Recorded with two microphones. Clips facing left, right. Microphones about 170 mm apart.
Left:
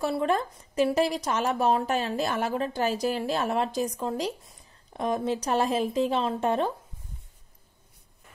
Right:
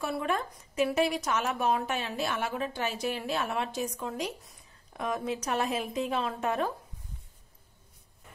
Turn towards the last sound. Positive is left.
turn(degrees=30)  # may be behind; listen again after turning